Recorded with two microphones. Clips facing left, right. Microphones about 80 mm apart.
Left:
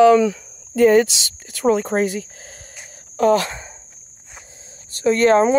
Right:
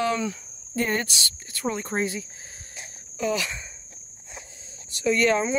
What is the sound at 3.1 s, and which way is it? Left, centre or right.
Speech, left.